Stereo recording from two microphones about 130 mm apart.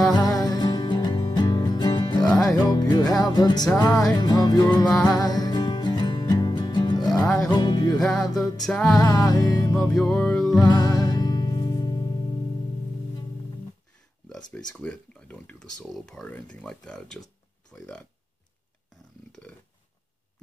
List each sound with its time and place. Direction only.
0.1 s music: 30° left (ahead or behind)
7.2 s music: 5° left (ahead or behind)
7.5 s music: 35° left (ahead or behind)
8.1 s music: 5° left (ahead or behind)
9.0 s music: 30° left (ahead or behind)
9.8 s speech: 5° left (ahead or behind)
10.2 s music: 5° left (ahead or behind)
10.7 s music: 30° left (ahead or behind)
14.8 s speech: 10° left (ahead or behind)